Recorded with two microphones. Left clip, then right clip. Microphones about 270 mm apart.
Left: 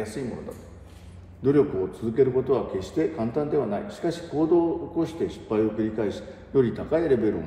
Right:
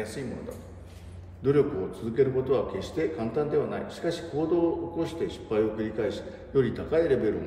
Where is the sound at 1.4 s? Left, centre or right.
Left.